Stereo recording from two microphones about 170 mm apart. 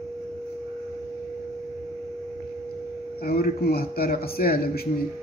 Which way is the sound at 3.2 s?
60° left (ahead or behind).